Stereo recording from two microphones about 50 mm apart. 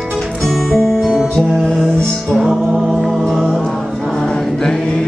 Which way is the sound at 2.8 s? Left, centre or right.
Centre.